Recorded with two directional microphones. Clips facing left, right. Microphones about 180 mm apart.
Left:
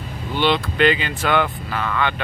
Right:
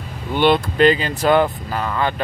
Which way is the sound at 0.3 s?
50° right (ahead or behind).